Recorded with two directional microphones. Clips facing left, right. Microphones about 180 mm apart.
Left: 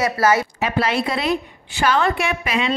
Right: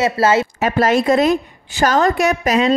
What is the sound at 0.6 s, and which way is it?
Speech, 45° right (ahead or behind).